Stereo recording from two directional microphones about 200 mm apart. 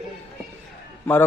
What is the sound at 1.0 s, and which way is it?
Speech, 5° left (ahead or behind).